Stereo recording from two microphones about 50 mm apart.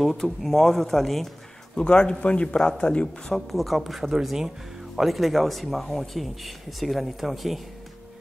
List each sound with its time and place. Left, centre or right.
0.0 s speech: centre
1.8 s speech: centre
3.3 s speech: centre